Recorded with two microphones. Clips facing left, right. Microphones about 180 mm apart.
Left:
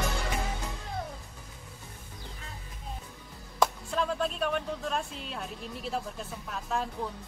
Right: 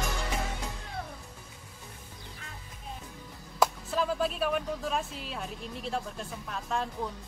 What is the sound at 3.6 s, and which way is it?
Speech, 5° right (ahead or behind).